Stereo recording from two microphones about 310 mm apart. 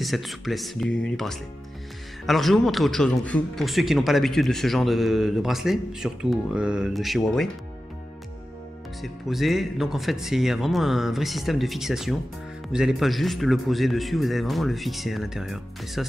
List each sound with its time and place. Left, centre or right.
0.0 s a man's voice: centre
9.0 s a man's voice: centre